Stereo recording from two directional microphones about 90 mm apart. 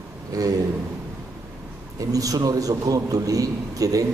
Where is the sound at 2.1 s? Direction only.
40° right (ahead or behind).